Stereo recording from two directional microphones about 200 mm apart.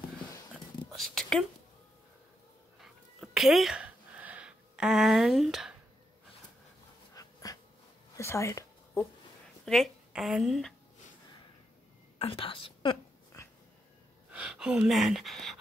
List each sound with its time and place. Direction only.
0.9 s a sound: centre (ahead or behind)
2.8 s dog: centre (ahead or behind)
7.5 s a sound: 20° left (ahead or behind)
9.7 s speech: centre (ahead or behind)
12.2 s speech: 25° left (ahead or behind)
14.3 s speech: 5° right (ahead or behind)